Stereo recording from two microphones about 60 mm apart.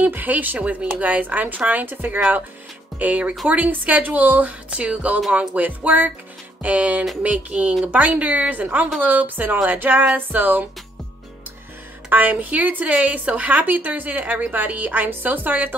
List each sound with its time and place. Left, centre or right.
0.0 s speech: right
12.1 s speech: right